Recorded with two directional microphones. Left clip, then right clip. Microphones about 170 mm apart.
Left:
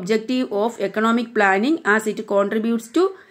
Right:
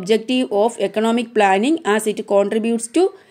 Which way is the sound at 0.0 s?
35° right (ahead or behind).